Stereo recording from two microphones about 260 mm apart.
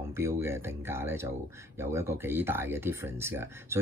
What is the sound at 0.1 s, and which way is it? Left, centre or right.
Speech, centre.